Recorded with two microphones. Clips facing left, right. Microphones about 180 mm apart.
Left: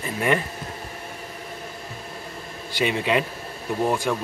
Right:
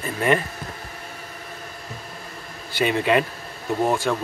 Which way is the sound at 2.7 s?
15° left (ahead or behind).